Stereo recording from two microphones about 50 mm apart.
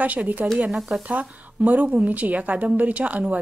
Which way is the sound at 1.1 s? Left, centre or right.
Right.